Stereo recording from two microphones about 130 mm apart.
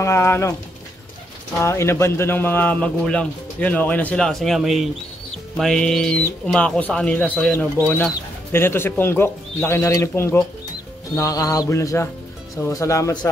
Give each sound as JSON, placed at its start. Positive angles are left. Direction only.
{"t": 0.0, "sound": "music", "side_deg": 20}
{"t": 1.6, "sound": "speech", "side_deg": 20}
{"t": 11.1, "sound": "music", "side_deg": 25}